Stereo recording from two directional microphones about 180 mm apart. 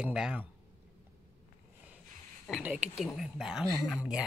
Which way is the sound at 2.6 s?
5° right (ahead or behind).